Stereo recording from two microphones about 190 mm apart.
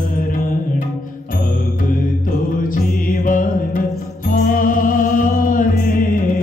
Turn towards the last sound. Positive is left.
turn(degrees=45)  # may be behind; listen again after turning